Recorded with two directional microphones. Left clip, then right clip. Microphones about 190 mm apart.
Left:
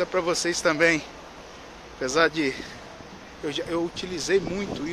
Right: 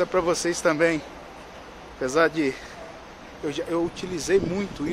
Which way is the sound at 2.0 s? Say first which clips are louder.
Right 1 dB; 5° right (ahead or behind).